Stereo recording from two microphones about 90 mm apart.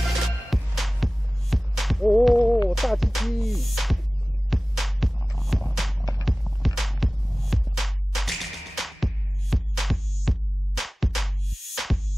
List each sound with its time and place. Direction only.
0.5 s music: centre (ahead or behind)